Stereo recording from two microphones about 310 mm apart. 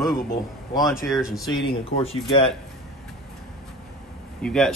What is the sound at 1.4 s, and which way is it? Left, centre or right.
Speech, centre.